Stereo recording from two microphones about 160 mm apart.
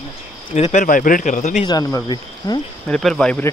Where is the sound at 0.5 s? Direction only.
45° left (ahead or behind).